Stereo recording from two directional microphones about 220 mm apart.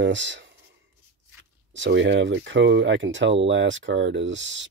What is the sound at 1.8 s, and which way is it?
Speech, 55° right (ahead or behind).